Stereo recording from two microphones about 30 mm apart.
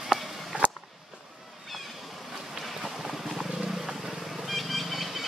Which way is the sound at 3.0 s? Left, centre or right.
Centre.